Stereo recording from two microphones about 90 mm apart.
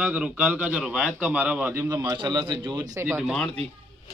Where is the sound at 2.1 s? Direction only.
60° right (ahead or behind); by 3.0 s 45° right (ahead or behind).